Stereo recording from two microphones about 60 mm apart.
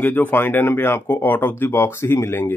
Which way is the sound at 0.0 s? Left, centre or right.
Left.